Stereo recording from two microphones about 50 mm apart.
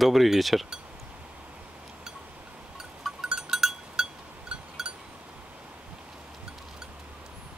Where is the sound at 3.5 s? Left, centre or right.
Centre.